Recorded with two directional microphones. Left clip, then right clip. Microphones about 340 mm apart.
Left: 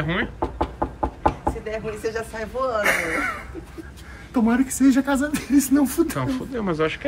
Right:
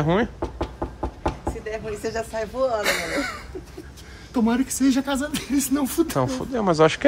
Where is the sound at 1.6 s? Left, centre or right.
Right.